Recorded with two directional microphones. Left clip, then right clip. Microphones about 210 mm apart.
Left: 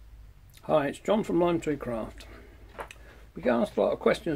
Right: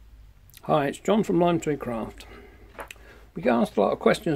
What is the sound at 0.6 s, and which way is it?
Speech, 45° right (ahead or behind).